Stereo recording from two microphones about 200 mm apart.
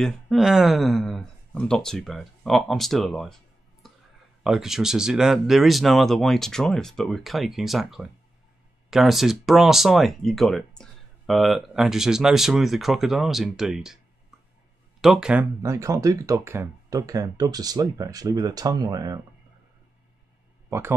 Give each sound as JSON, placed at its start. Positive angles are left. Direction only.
{"t": 0.0, "sound": "speech", "side_deg": 0}
{"t": 4.4, "sound": "speech", "side_deg": 0}
{"t": 15.0, "sound": "speech", "side_deg": 0}
{"t": 15.6, "sound": "speech", "side_deg": -15}